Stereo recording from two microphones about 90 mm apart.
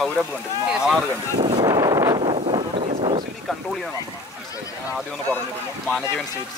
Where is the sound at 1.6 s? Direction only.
40° right (ahead or behind).